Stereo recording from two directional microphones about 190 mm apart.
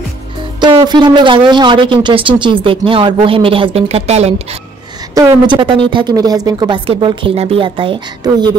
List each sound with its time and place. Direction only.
0.7 s speech: 25° right (ahead or behind)
5.1 s speech: 15° right (ahead or behind)